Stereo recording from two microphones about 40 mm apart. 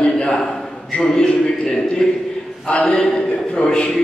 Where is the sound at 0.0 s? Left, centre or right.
Left.